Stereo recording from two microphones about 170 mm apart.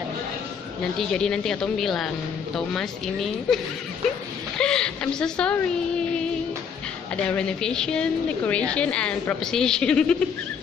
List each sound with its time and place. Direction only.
0.9 s a woman's voice: 5° left (ahead or behind)
4.6 s a sound: 5° left (ahead or behind)
7.2 s a woman's voice: 5° left (ahead or behind)